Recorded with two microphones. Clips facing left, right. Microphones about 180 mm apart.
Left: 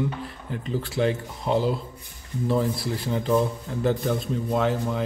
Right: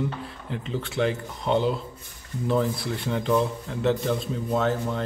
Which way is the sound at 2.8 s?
Centre (ahead or behind).